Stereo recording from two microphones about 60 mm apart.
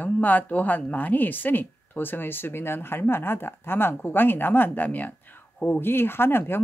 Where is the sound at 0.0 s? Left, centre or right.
Left.